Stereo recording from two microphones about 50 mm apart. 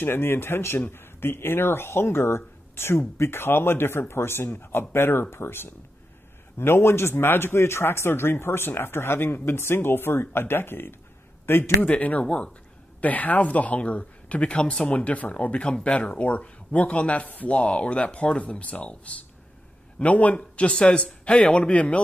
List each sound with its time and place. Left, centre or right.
0.0 s a man's voice: left
11.8 s speech: left
13.0 s speech: left